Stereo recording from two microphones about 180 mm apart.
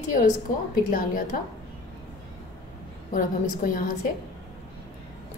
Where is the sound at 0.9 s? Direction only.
50° left (ahead or behind).